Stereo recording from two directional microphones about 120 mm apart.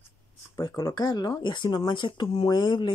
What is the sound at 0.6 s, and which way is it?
Speech, 30° left (ahead or behind).